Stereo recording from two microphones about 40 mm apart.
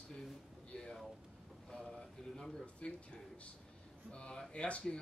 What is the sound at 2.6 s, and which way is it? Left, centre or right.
Speech, left.